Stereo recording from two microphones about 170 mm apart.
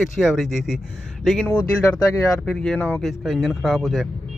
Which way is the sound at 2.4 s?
5° left (ahead or behind).